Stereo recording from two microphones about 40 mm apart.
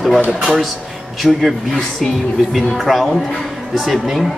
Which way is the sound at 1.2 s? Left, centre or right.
Left.